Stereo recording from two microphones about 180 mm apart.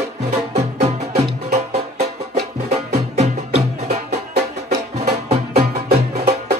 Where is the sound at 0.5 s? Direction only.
40° right (ahead or behind).